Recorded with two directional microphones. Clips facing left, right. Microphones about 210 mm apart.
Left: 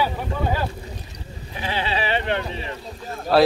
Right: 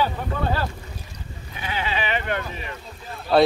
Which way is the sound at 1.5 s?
30° left (ahead or behind).